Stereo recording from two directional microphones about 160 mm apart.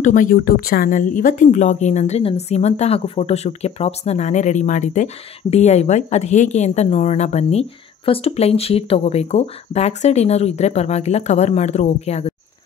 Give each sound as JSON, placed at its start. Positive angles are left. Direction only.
{"t": 0.0, "sound": "speech", "side_deg": 55}